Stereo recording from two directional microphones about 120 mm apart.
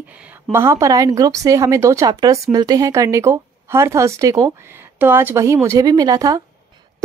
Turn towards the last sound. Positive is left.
turn(degrees=-30)  # may be behind; listen again after turning